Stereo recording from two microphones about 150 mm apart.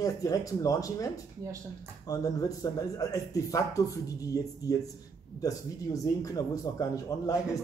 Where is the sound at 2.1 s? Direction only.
25° left (ahead or behind).